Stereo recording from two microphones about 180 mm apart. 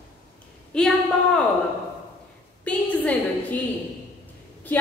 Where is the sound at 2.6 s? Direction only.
10° left (ahead or behind).